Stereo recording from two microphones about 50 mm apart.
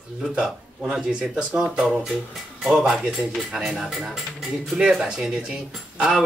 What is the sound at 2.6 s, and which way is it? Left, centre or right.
Speech, centre.